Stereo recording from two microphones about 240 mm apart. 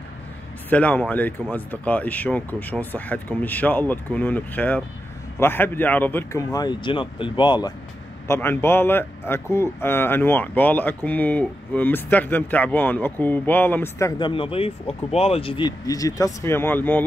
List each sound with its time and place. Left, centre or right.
0.7 s speech: centre